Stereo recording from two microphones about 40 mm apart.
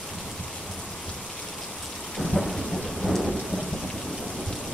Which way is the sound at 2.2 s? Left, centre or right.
Centre.